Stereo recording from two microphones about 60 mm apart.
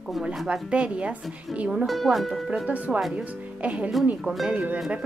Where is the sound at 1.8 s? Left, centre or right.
Centre.